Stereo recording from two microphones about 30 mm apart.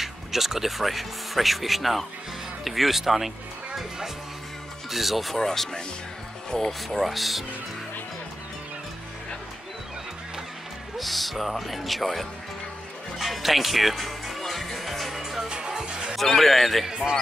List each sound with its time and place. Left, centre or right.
0.0 s speech: centre
4.8 s speech: centre
6.9 s speech: centre
11.0 s speech: centre
14.4 s music: centre
15.4 s music: right
16.2 s speech: centre